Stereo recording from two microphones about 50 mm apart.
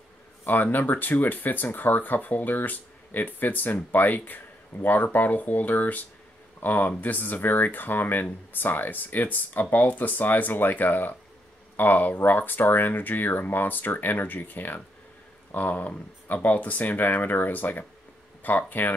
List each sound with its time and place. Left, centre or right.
0.5 s speech: left